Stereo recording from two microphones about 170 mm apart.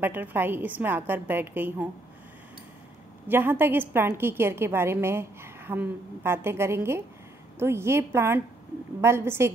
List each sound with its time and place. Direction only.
0.0 s a woman's voice: 10° right (ahead or behind)
3.3 s a woman's voice: 10° right (ahead or behind)